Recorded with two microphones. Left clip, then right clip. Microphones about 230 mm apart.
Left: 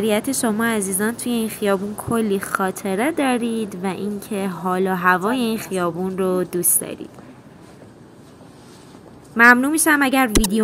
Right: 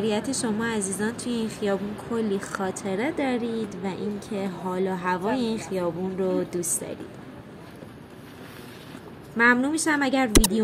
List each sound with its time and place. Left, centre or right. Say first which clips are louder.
0.0 s a woman's voice: left 6 dB; left
9.4 s a woman's voice: left 8 dB; left